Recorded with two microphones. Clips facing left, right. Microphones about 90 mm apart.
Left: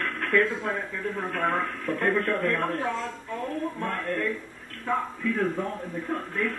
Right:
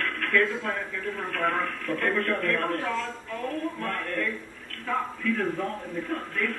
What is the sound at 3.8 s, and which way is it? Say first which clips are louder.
A man's voice: left 1 dB; 20° left (ahead or behind).